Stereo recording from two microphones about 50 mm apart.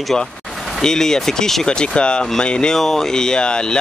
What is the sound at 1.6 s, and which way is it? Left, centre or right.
Speech, centre.